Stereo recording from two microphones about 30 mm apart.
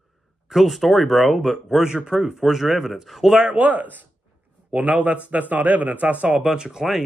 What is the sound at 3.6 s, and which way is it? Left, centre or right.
Speech, right.